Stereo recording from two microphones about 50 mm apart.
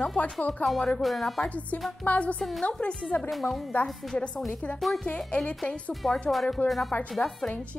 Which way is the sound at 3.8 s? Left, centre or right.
Centre.